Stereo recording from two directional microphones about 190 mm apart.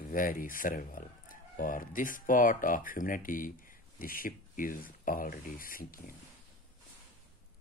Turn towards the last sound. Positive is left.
turn(degrees=50)  # may be behind; listen again after turning